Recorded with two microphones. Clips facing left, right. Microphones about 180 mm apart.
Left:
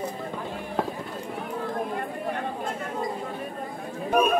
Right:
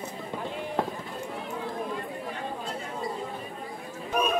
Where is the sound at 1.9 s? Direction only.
55° left (ahead or behind).